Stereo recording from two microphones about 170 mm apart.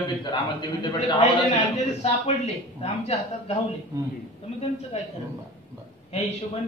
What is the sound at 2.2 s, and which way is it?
Speech, 40° left (ahead or behind).